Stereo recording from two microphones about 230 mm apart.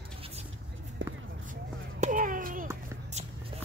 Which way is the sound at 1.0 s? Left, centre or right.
Right.